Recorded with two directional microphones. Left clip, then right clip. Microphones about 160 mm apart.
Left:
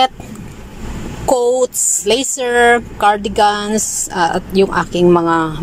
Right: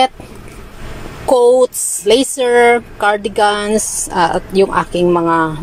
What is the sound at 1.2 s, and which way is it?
Speech, centre (ahead or behind).